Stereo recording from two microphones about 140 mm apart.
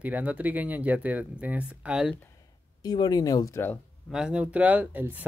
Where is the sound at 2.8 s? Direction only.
30° left (ahead or behind).